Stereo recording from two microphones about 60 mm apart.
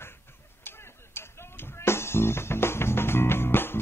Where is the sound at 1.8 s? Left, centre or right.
Left.